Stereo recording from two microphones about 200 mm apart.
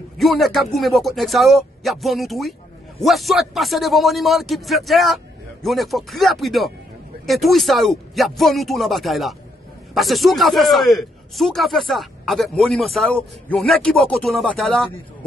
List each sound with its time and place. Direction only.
0.2 s a man's voice: centre (ahead or behind)